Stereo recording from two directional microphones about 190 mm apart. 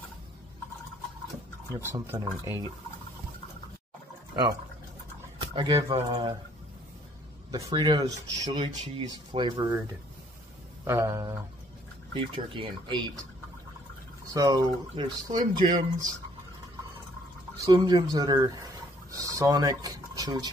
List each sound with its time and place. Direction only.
1.8 s speech: 15° right (ahead or behind)
5.4 s speech: 25° right (ahead or behind)
7.5 s speech: 25° right (ahead or behind)
10.9 s speech: 15° right (ahead or behind)
14.3 s speech: 20° right (ahead or behind)
17.6 s speech: 20° right (ahead or behind)